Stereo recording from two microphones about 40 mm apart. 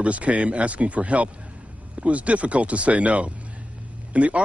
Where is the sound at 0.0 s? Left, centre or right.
Right.